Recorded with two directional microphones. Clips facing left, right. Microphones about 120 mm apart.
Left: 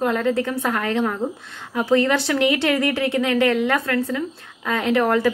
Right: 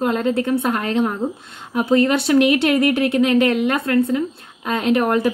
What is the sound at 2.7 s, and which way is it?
Speech, 20° right (ahead or behind).